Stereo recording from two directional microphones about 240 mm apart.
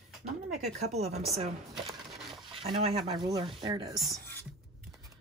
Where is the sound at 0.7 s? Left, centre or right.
Right.